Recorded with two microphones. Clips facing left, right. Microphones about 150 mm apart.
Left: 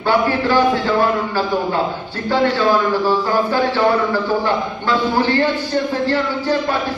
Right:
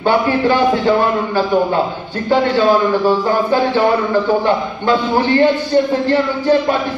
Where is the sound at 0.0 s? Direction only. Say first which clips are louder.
Right 3 dB; 20° right (ahead or behind).